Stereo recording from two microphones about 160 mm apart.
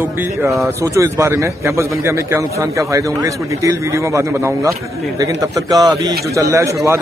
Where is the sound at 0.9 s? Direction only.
15° right (ahead or behind).